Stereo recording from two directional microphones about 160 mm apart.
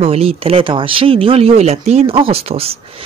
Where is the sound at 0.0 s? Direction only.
40° right (ahead or behind).